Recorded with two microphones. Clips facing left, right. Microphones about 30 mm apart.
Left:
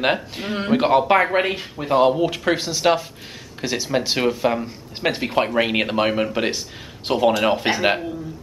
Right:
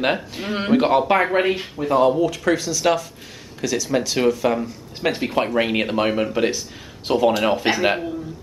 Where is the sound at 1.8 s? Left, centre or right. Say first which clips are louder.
Left 1 dB; left.